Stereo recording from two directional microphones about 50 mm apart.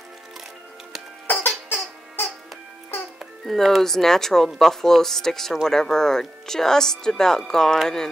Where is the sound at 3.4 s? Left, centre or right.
Centre.